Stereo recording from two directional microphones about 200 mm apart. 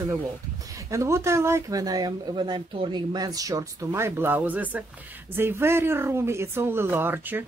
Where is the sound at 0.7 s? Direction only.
15° right (ahead or behind).